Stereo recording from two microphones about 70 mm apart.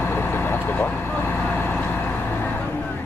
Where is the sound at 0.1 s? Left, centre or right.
Left.